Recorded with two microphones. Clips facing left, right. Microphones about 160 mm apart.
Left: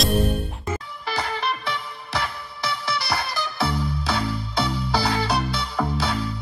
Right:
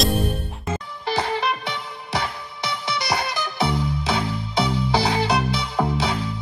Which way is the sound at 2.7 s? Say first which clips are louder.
Right 1 dB; 20° right (ahead or behind).